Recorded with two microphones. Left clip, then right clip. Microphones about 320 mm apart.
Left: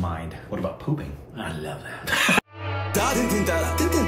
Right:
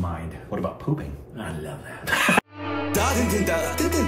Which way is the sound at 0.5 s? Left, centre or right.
Centre.